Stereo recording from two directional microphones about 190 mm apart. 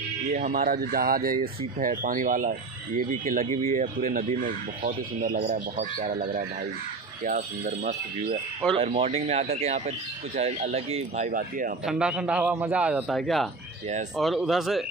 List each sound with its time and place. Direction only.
0.3 s speech: 45° right (ahead or behind)
8.7 s speech: 30° right (ahead or behind)
11.2 s speech: 45° right (ahead or behind)
11.8 s a man's voice: 5° right (ahead or behind)